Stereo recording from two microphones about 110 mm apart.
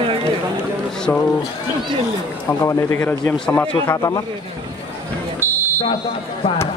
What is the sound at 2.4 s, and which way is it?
Speech, 20° left (ahead or behind).